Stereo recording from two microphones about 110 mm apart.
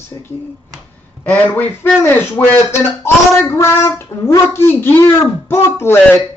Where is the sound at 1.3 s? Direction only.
15° left (ahead or behind).